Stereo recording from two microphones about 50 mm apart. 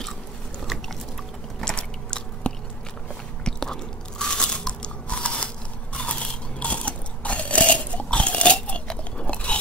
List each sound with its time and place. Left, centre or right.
1.6 s biting: centre
3.4 s crunch: centre
5.9 s biting: left